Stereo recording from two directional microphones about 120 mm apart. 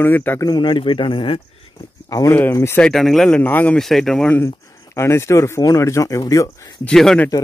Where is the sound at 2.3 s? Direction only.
20° left (ahead or behind).